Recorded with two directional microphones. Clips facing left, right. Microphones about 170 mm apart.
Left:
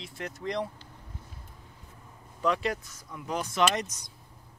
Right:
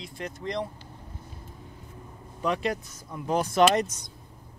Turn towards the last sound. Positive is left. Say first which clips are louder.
# right 6 dB
turn(degrees=-40)  # may be behind; listen again after turning